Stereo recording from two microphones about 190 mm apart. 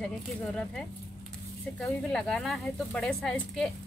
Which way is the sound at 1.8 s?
5° left (ahead or behind).